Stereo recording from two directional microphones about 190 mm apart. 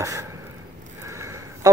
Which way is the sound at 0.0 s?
15° right (ahead or behind).